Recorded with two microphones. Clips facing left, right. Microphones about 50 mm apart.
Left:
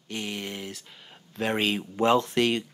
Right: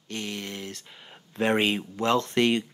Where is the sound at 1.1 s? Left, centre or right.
Centre.